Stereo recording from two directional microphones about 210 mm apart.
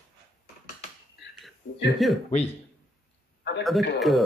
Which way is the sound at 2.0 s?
Centre (ahead or behind).